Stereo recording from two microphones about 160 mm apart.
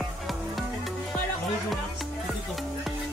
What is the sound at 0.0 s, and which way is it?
Music, centre (ahead or behind).